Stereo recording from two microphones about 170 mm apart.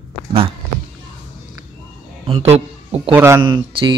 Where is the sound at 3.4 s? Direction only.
25° right (ahead or behind).